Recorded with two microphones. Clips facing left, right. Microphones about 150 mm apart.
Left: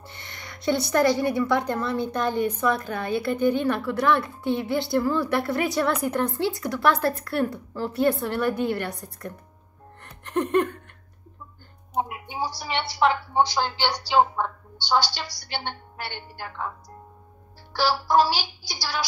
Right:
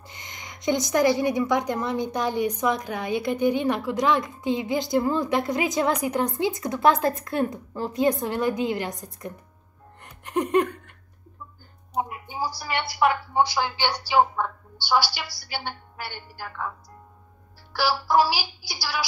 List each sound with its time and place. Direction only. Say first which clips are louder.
0.0 s a woman's voice: left 1 dB; 15° right (ahead or behind)
10.0 s music: even; 10° right (ahead or behind)
13.0 s a woman's voice: even; 5° right (ahead or behind)
14.3 s a woman's voice: even; 15° left (ahead or behind)
15.1 s a woman's voice: left 1 dB; 5° right (ahead or behind)
17.7 s a woman's voice: left 1 dB; 5° right (ahead or behind)